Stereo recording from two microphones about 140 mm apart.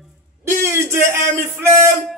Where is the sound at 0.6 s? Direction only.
20° right (ahead or behind).